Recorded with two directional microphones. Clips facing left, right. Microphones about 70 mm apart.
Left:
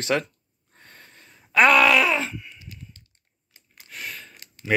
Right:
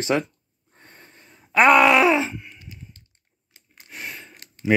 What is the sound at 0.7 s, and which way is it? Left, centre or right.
Groan, right.